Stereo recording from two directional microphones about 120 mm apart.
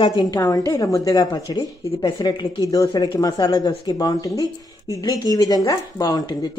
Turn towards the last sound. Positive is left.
turn(degrees=35)  # may be behind; listen again after turning